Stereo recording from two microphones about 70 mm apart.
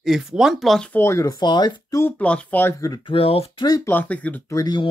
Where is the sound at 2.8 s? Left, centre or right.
Left.